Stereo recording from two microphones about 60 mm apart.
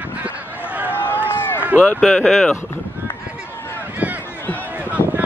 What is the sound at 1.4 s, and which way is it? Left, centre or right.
Run, left.